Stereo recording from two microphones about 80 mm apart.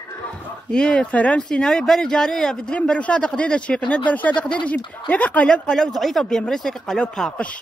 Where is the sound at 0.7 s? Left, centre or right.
Centre.